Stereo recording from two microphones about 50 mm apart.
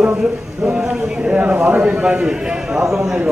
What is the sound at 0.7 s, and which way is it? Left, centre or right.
A man's voice, right.